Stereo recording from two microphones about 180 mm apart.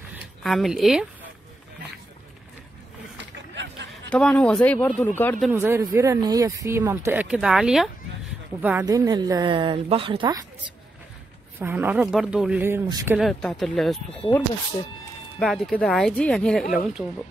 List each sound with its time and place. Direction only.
0.4 s speech: centre (ahead or behind)
4.1 s speech: 5° left (ahead or behind)
5.5 s speech: 10° right (ahead or behind)
8.8 s a woman's voice: 20° right (ahead or behind)
11.6 s speech: 10° right (ahead or behind)
13.2 s speech: 5° left (ahead or behind)
15.3 s speech: centre (ahead or behind)